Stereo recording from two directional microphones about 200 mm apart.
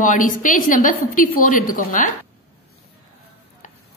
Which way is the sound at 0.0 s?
40° left (ahead or behind).